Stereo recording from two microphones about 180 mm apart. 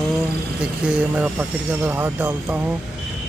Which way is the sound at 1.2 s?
10° right (ahead or behind).